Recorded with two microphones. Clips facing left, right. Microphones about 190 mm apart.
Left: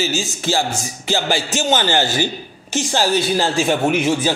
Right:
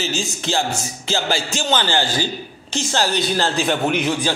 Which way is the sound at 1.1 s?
15° left (ahead or behind).